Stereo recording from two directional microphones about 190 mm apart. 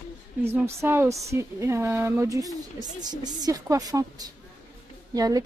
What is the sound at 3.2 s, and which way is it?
A woman's voice, 20° right (ahead or behind).